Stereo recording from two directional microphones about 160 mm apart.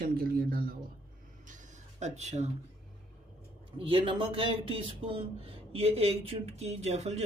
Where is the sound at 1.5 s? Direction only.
45° right (ahead or behind).